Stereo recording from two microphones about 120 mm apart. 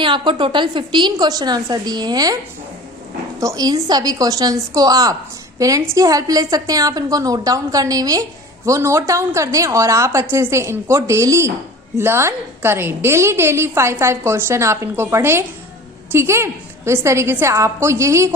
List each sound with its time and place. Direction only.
0.0 s a woman's voice: 45° right (ahead or behind)
3.3 s a woman's voice: 30° right (ahead or behind)